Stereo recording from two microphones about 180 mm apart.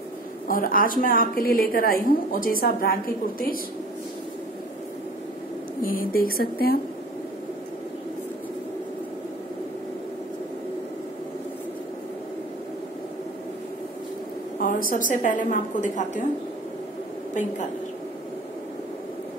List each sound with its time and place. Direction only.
0.5 s a woman's voice: 50° left (ahead or behind)
5.8 s a woman's voice: 50° left (ahead or behind)
14.9 s a woman's voice: 50° left (ahead or behind)
17.3 s a woman's voice: 40° left (ahead or behind)